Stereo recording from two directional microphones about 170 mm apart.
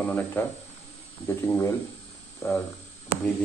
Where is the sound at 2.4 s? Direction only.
15° left (ahead or behind).